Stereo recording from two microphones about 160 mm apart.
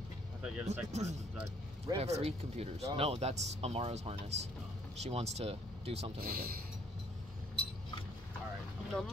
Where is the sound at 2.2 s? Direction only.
40° right (ahead or behind).